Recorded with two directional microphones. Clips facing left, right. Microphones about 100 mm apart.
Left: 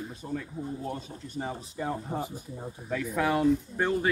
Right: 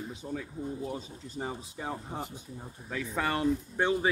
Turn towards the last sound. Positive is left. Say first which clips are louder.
# left 1 dB
turn(degrees=0)  # may be behind; listen again after turning